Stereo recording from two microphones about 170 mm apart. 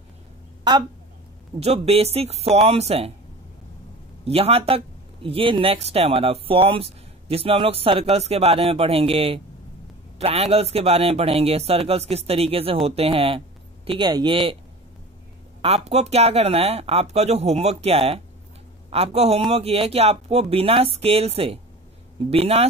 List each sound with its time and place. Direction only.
1.6 s speech: 35° right (ahead or behind)
4.2 s speech: 35° right (ahead or behind)
15.6 s speech: 40° right (ahead or behind)